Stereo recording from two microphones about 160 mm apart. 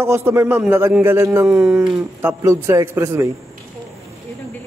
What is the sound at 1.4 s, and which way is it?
Speech, 5° right (ahead or behind).